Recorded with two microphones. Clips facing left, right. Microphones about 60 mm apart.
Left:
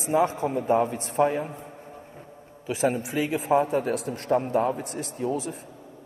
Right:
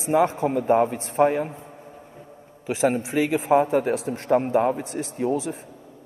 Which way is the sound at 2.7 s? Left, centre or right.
Right.